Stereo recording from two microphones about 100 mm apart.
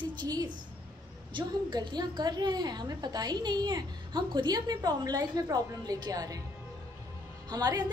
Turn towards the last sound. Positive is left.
turn(degrees=-40)  # may be behind; listen again after turning